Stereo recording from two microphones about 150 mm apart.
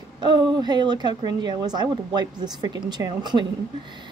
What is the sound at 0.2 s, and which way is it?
A woman's voice, 30° right (ahead or behind).